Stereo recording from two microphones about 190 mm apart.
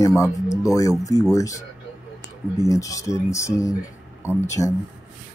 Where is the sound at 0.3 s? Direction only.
15° left (ahead or behind).